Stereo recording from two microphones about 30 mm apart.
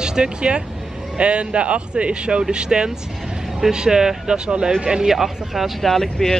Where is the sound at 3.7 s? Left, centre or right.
Right.